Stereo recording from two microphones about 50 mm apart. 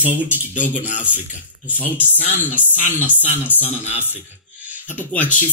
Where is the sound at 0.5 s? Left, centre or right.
Left.